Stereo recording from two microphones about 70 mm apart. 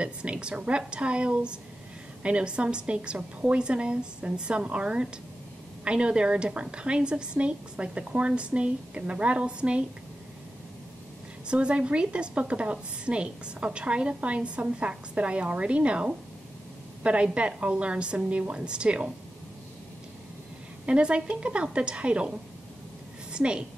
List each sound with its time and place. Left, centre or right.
0.0 s a woman's voice: centre
11.4 s a woman's voice: centre
20.8 s a woman's voice: centre
23.3 s a woman's voice: centre